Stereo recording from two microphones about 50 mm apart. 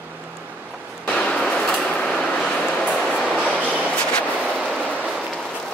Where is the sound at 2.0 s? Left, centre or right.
Centre.